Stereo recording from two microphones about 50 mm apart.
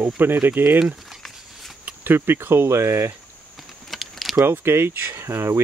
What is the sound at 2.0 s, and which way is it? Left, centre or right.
Speech, right.